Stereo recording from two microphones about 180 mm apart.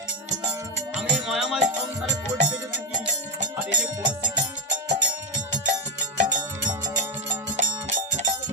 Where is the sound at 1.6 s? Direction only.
80° right.